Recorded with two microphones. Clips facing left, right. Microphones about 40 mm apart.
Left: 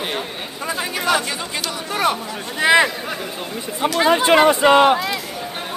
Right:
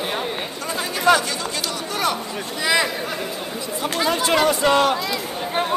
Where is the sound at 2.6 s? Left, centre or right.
Left.